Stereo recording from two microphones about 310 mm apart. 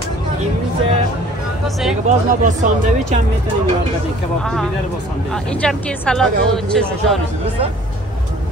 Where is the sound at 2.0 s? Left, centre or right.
Right.